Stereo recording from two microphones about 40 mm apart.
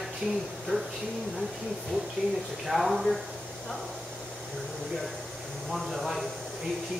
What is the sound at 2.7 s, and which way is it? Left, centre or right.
Speech, centre.